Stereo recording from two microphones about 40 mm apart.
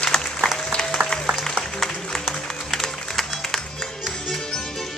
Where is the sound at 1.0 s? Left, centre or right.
Right.